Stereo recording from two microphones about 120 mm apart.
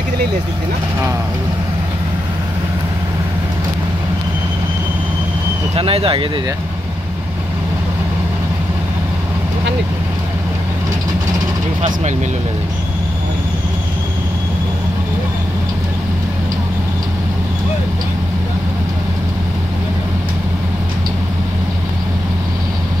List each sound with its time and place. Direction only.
5.8 s speech: 50° right (ahead or behind)